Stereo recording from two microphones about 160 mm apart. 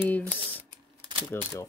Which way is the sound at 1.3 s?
15° left (ahead or behind).